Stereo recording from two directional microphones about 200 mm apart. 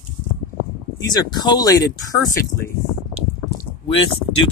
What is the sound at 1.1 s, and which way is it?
Speech, 20° left (ahead or behind).